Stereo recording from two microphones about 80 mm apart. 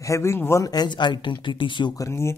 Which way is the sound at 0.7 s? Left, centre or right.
Left.